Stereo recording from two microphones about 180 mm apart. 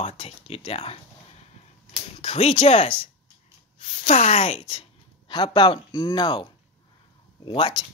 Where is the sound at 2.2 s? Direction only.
30° left (ahead or behind).